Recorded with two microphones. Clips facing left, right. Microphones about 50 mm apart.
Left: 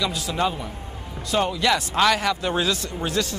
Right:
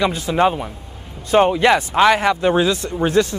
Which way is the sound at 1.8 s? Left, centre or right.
Right.